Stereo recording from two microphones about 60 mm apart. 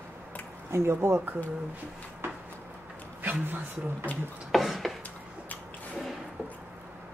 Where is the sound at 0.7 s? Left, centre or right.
Right.